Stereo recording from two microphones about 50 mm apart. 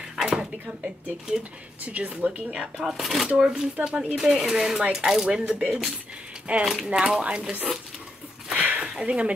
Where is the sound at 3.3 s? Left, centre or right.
Centre.